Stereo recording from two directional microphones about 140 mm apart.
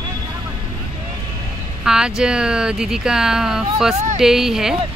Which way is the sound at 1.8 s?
5° right (ahead or behind).